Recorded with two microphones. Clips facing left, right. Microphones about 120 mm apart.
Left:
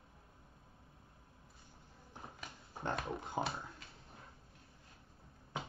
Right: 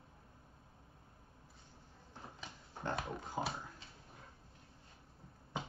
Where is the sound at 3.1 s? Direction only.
15° left (ahead or behind).